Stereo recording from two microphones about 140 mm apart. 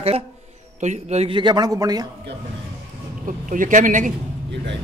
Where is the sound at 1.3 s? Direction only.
30° right (ahead or behind).